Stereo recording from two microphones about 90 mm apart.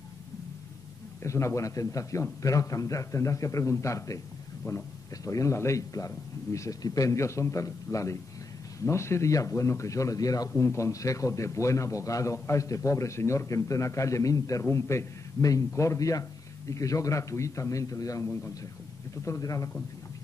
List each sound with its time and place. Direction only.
1.2 s a man's voice: 30° left (ahead or behind)